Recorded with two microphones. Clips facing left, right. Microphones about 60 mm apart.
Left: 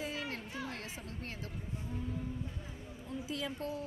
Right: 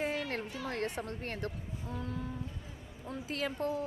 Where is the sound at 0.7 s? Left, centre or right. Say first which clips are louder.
Right 8 dB; right.